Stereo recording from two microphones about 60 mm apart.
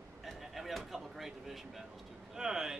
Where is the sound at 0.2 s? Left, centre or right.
Centre.